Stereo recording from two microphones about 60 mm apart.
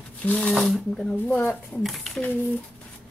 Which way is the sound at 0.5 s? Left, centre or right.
Centre.